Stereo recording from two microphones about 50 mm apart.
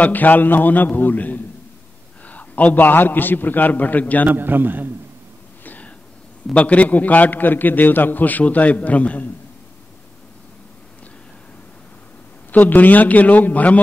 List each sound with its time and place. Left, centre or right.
0.0 s a man's voice: left
4.4 s a man's voice: right
5.6 s a sound: left
6.5 s a man's voice: left
12.4 s a man's voice: left